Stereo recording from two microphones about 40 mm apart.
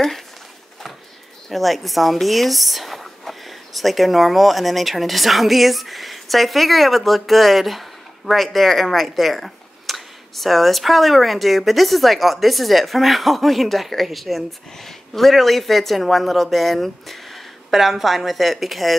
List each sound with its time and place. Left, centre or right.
1.5 s speech: centre